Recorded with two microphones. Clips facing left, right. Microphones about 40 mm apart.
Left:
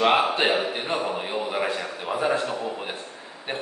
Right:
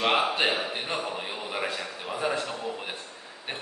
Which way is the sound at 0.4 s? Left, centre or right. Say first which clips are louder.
Left 4 dB; centre.